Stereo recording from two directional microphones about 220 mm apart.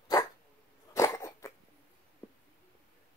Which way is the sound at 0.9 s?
15° left (ahead or behind).